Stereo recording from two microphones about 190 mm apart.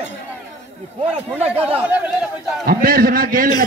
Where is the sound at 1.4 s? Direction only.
30° right (ahead or behind).